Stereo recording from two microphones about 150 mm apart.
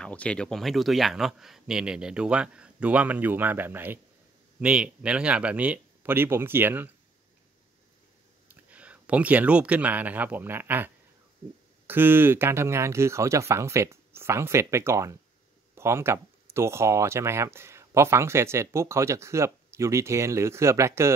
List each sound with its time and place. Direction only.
0.0 s speech: 10° left (ahead or behind); by 6.9 s 15° right (ahead or behind)
8.5 s speech: 10° right (ahead or behind)
11.9 s speech: 15° right (ahead or behind)